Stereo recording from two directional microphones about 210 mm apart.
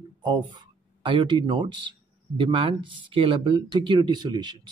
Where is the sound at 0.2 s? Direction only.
20° right (ahead or behind).